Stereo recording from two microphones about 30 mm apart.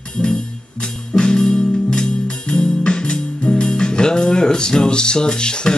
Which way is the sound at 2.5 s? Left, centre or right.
Left.